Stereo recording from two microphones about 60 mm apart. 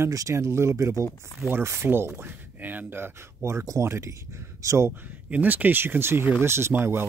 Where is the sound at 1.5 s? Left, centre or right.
Right.